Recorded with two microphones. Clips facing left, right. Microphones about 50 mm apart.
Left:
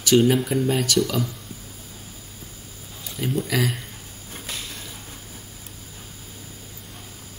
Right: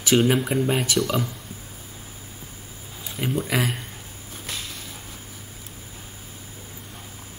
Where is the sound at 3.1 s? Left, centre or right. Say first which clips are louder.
Even; centre.